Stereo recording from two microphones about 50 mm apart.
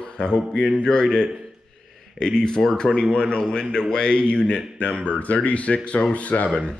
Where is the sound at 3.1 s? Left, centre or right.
Centre.